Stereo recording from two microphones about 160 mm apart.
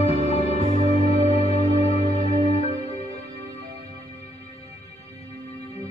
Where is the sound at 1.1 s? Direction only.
40° left (ahead or behind).